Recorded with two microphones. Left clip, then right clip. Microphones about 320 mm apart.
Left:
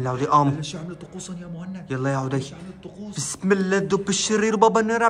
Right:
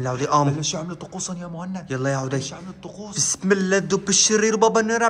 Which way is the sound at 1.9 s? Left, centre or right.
Centre.